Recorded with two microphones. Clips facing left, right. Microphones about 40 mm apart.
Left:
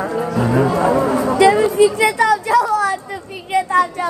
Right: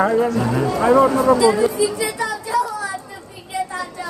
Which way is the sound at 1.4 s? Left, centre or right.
Left.